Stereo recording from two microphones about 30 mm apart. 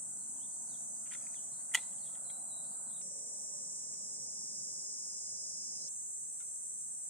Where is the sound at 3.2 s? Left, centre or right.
Left.